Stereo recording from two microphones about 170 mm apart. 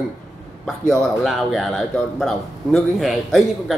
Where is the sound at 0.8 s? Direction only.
Centre (ahead or behind).